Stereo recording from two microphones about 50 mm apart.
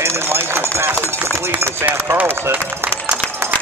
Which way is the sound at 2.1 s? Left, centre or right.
Right.